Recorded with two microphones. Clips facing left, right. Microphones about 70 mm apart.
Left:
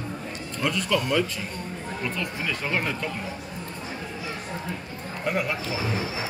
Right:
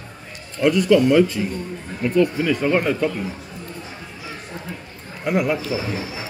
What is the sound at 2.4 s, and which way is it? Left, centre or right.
Speech, centre.